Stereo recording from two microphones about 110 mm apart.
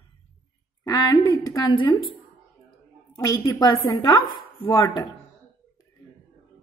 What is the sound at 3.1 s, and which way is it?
A woman's voice, 30° left (ahead or behind).